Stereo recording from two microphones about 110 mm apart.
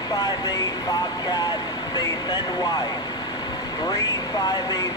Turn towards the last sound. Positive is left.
turn(degrees=35)  # may be behind; listen again after turning